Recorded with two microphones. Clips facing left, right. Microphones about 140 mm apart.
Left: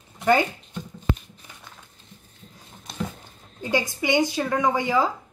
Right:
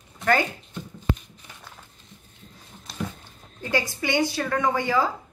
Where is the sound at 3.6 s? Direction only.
15° left (ahead or behind).